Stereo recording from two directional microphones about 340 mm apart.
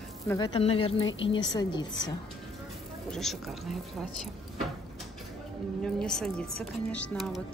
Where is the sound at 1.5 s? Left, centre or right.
Centre.